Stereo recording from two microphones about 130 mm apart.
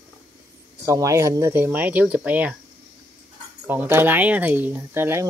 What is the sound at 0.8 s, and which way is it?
Speech, 25° right (ahead or behind).